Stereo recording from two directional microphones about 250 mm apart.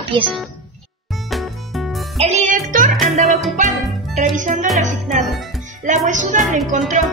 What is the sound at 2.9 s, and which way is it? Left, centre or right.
Music, centre.